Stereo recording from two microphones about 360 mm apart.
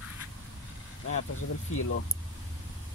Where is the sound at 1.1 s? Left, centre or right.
Left.